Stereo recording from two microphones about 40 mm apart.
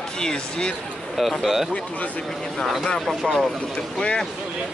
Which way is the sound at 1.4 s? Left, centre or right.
Centre.